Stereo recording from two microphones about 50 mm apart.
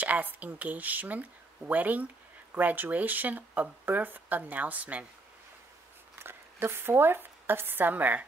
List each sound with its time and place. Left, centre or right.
0.0 s speech: right
6.2 s speech: right